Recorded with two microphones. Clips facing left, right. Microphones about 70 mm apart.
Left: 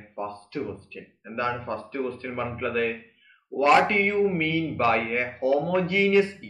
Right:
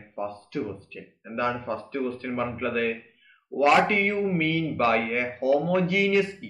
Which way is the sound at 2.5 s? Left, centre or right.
Left.